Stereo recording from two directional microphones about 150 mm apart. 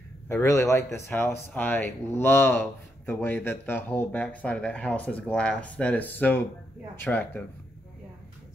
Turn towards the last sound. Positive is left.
turn(degrees=10)  # may be behind; listen again after turning